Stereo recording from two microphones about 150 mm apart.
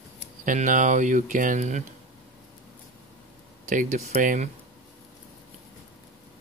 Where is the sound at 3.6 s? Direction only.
60° right (ahead or behind).